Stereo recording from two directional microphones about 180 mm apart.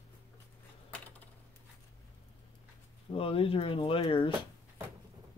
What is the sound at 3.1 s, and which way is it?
Speech, 30° left (ahead or behind).